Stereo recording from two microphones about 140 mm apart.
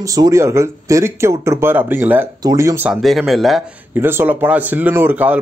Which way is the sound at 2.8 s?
Centre (ahead or behind).